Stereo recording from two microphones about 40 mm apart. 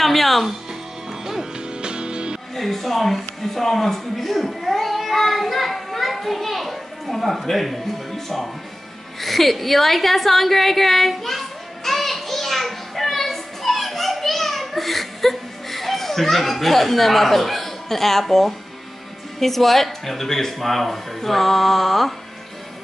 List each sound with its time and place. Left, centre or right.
0.0 s speech: centre
1.2 s music: centre
1.8 s music: right
2.5 s speech: centre
9.2 s a sound: centre
19.4 s a man's voice: centre